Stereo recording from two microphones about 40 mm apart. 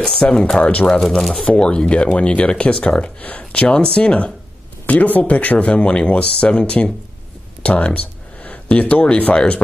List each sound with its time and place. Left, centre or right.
0.0 s speech: centre
0.6 s speech: left
1.0 s speech: centre
1.4 s speech: left
3.0 s speech: left
4.8 s speech: left